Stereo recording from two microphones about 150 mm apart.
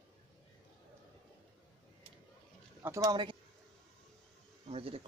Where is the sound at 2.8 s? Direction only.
20° right (ahead or behind).